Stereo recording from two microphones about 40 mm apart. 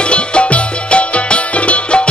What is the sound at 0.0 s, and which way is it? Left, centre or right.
Music, left.